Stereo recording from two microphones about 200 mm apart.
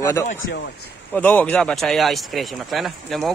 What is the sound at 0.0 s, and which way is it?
Speech, 15° left (ahead or behind).